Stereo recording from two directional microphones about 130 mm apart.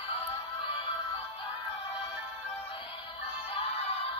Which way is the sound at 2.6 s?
45° left (ahead or behind).